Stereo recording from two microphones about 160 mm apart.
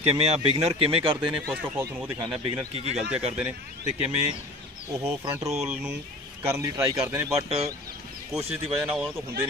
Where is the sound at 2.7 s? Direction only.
40° right (ahead or behind).